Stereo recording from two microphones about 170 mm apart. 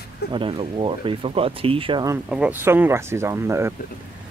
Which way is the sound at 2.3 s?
10° right (ahead or behind).